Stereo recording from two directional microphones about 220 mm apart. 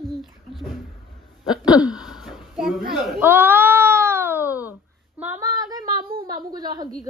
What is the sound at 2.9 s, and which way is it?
Baby cry, 5° right (ahead or behind).